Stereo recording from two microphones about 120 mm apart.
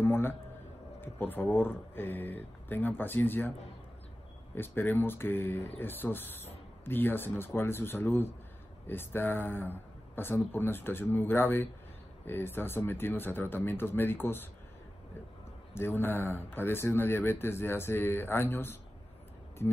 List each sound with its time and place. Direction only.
0.0 s a man's voice: 20° left (ahead or behind)
4.6 s speech: 15° left (ahead or behind)
15.7 s speech: 20° left (ahead or behind)